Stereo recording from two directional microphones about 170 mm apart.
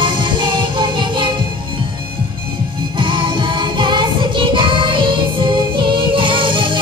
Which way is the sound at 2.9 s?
30° right (ahead or behind).